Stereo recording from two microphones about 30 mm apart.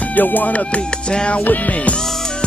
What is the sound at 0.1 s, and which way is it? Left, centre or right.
Music, left.